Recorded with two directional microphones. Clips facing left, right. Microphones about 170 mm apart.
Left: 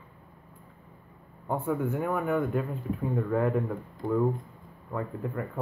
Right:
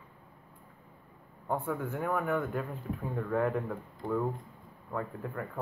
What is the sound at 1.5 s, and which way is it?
Speech, 15° left (ahead or behind).